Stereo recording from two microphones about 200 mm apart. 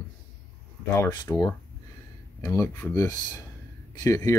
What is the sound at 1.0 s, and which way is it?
Speech, 15° left (ahead or behind).